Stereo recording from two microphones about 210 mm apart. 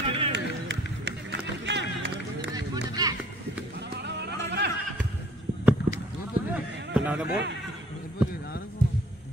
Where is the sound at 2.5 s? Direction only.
20° right (ahead or behind).